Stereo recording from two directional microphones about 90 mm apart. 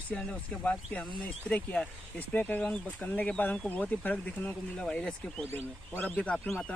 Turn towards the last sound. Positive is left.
turn(degrees=15)  # may be behind; listen again after turning